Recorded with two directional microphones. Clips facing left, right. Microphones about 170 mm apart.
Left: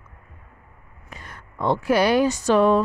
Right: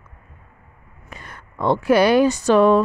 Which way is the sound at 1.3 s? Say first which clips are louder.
Right 3 dB; 65° right (ahead or behind).